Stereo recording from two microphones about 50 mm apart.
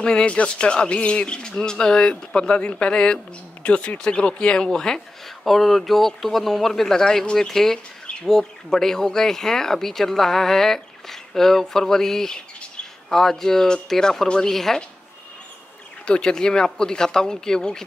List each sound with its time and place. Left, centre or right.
0.0 s speech: left
16.1 s speech: centre